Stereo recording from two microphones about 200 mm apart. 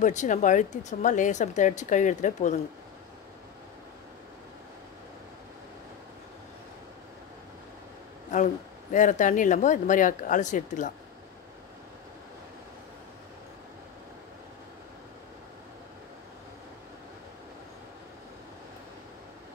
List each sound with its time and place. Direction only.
0.0 s speech: 35° left (ahead or behind)
8.9 s speech: 40° left (ahead or behind)